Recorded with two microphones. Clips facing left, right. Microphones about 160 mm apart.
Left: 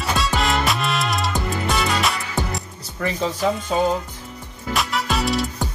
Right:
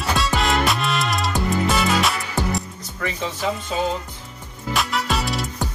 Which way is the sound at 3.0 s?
40° left (ahead or behind).